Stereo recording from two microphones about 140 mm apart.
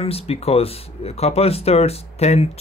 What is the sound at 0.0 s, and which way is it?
Speech, 45° left (ahead or behind).